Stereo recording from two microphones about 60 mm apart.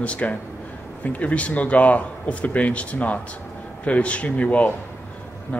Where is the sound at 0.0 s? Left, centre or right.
Left.